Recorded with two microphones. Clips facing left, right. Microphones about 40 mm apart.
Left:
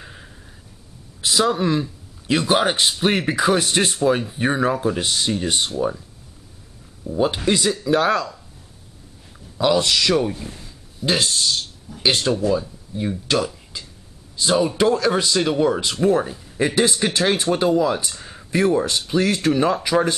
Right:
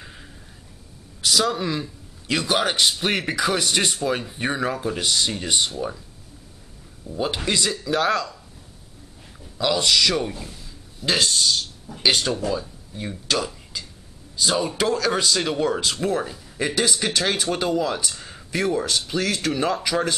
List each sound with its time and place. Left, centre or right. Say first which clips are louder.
0.0 s a sound: left 2 dB; centre
1.2 s speech: left 3 dB; centre
7.0 s speech: left 5 dB; centre
9.6 s speech: left 2 dB; centre
14.4 s speech: left 4 dB; centre